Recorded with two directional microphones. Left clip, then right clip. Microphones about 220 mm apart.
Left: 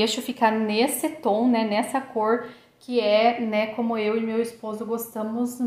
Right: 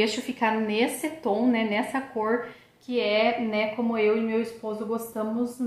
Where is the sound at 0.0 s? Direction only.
35° left (ahead or behind).